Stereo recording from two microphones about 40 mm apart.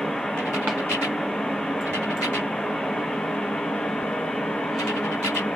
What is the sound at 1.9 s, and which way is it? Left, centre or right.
Vehicle, left.